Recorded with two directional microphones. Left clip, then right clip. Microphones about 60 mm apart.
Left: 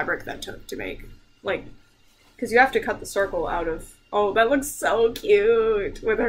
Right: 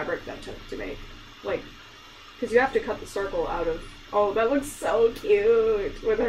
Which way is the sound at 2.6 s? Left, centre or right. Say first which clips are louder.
Left 4 dB; left.